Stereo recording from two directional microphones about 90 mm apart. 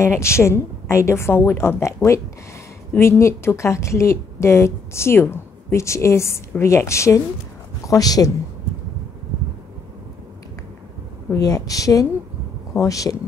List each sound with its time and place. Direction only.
0.0 s a woman's voice: 30° left (ahead or behind)
11.3 s a woman's voice: 40° left (ahead or behind)